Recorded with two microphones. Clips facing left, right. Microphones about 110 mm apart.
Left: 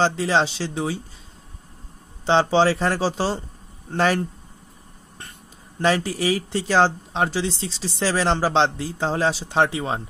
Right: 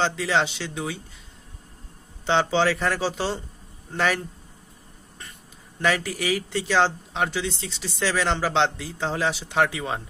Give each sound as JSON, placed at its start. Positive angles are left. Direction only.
{"t": 0.0, "sound": "speech", "side_deg": 30}
{"t": 2.2, "sound": "speech", "side_deg": 35}
{"t": 5.8, "sound": "speech", "side_deg": 35}